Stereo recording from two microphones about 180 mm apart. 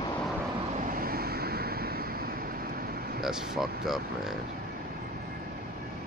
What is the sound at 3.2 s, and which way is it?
Speech, centre (ahead or behind).